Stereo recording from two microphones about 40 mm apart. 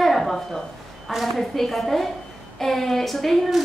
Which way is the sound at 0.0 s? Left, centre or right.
Centre.